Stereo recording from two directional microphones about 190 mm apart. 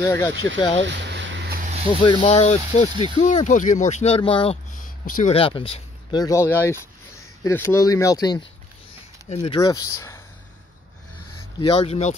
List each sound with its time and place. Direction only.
0.0 s speech: 15° left (ahead or behind)
0.8 s a sound: 65° right (ahead or behind)
1.9 s speech: 25° left (ahead or behind)
5.0 s speech: 45° left (ahead or behind)
5.3 s speech: 30° left (ahead or behind)
11.6 s speech: 30° left (ahead or behind)